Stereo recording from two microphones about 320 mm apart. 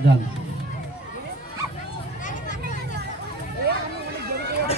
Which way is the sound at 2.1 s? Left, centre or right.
Left.